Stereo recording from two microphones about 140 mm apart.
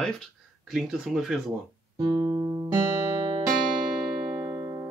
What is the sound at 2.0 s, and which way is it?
Music, 30° right (ahead or behind).